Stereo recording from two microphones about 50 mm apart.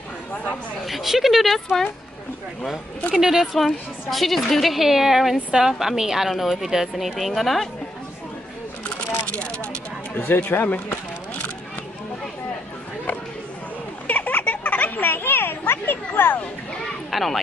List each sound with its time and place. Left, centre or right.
0.8 s a woman's voice: centre
3.2 s speech: centre
3.5 s a woman's voice: centre
9.3 s vehicle: left
10.1 s speech: left
14.0 s children playing: left
17.1 s speech: centre